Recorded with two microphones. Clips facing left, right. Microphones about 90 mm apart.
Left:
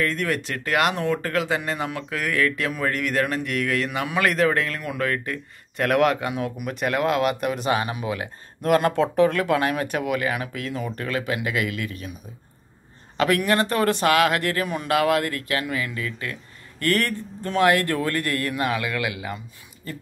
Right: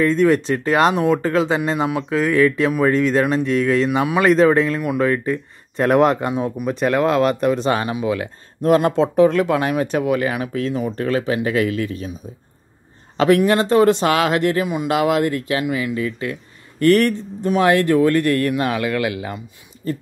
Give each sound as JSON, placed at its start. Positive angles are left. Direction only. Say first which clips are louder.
{"t": 0.0, "sound": "speech", "louder": "right 9 dB", "side_deg": -25}
{"t": 0.9, "sound": "speech", "louder": "right 7 dB", "side_deg": -15}
{"t": 13.2, "sound": "speech", "louder": "right 6 dB", "side_deg": -25}